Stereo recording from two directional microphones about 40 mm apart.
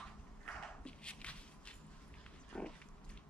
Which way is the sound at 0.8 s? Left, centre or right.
Left.